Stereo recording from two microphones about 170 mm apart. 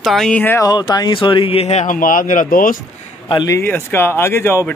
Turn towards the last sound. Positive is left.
turn(degrees=15)  # may be behind; listen again after turning